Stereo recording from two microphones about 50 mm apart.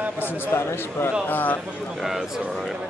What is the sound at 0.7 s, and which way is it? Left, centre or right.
Speech, left.